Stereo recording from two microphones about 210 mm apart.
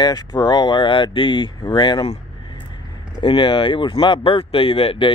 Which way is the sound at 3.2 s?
25° left (ahead or behind).